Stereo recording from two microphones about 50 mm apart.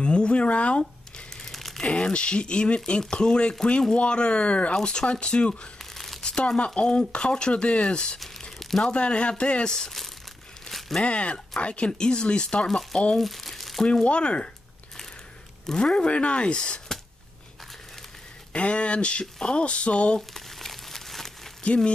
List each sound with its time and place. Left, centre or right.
0.0 s a sound: left
1.3 s crumpling: centre
1.8 s speech: centre
8.2 s a sound: centre
8.9 s speech: left; by 10.1 s centre
11.0 s speech: left
13.2 s crumpling: centre
14.0 s speech: left
15.6 s speech: centre
18.5 s speech: left
20.2 s crumpling: centre
21.6 s speech: left